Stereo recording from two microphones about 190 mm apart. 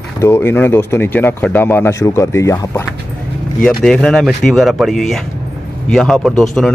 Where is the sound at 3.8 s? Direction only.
5° left (ahead or behind).